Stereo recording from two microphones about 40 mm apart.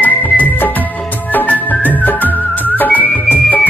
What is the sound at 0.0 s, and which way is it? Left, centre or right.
Music, left.